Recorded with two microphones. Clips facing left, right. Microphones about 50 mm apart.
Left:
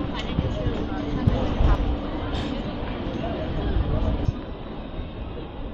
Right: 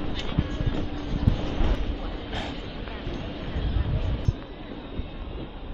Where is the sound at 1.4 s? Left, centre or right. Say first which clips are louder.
Left 4 dB; left.